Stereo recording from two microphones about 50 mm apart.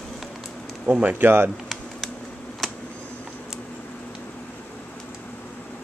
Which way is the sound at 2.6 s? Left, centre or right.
Centre.